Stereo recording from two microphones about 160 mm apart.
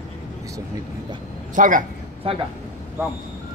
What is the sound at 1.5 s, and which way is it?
Speech, 55° right (ahead or behind).